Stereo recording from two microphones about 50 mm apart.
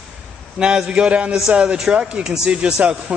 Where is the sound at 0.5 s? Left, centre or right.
Centre.